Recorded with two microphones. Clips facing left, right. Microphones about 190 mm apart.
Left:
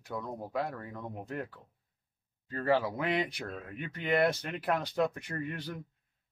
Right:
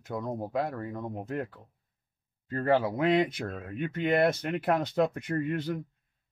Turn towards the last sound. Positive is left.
turn(degrees=-20)  # may be behind; listen again after turning